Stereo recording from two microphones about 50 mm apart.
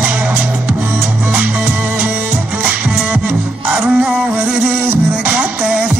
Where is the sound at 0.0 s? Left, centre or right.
Right.